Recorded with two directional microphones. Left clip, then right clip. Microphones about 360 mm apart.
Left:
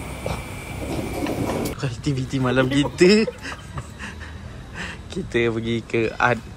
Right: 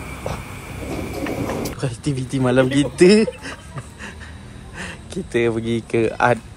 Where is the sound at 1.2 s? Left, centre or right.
Centre.